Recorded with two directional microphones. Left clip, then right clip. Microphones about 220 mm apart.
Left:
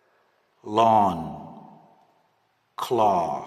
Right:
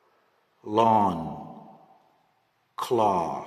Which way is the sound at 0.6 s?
10° left (ahead or behind).